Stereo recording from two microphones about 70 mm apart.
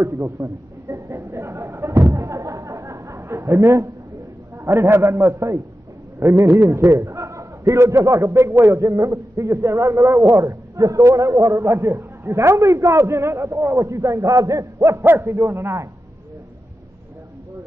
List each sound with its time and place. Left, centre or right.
0.0 s a man's voice: right
2.1 s a sound: right
4.6 s a man's voice: right
5.3 s a man's voice: right
10.8 s a man's voice: right